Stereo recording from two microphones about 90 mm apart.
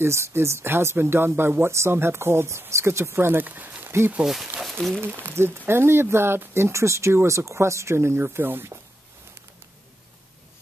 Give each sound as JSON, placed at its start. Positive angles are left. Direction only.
{"t": 0.0, "sound": "speech", "side_deg": -30}
{"t": 4.6, "sound": "speech", "side_deg": 0}
{"t": 5.0, "sound": "speech", "side_deg": -25}